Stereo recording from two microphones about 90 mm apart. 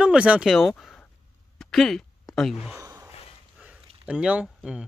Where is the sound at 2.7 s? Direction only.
35° right (ahead or behind).